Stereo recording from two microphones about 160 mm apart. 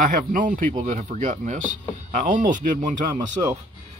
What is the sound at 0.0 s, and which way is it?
Speech, 60° right (ahead or behind).